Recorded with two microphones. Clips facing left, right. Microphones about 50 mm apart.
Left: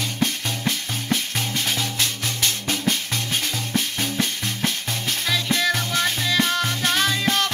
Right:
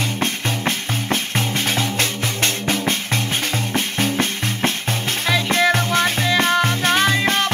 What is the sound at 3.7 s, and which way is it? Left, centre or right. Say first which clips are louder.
Music: right 3 dB; right.